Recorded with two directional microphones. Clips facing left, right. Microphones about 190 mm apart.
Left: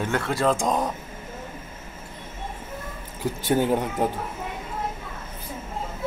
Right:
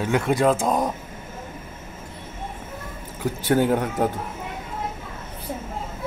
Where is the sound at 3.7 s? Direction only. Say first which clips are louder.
Right 1 dB; 10° left (ahead or behind).